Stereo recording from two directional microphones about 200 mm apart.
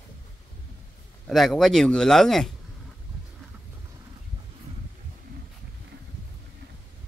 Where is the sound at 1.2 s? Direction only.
Centre (ahead or behind).